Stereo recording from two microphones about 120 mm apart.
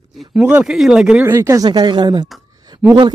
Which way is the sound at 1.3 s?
25° right (ahead or behind).